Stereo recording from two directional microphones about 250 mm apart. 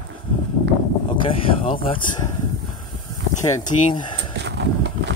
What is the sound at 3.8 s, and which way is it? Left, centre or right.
Speech, centre.